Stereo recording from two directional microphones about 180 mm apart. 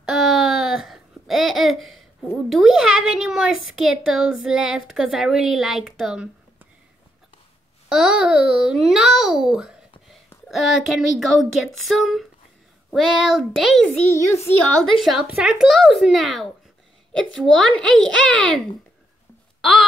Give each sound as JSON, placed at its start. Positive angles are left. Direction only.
{"t": 0.0, "sound": "babbling", "side_deg": 0}
{"t": 2.5, "sound": "a sound", "side_deg": 0}
{"t": 3.7, "sound": "a woman's voice", "side_deg": -5}
{"t": 7.9, "sound": "a woman's voice", "side_deg": -5}
{"t": 14.1, "sound": "a child's voice", "side_deg": 15}
{"t": 14.8, "sound": "a woman's voice", "side_deg": 0}
{"t": 19.6, "sound": "a woman's voice", "side_deg": 0}